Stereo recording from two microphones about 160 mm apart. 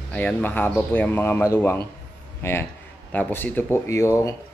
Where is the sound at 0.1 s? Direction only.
10° left (ahead or behind).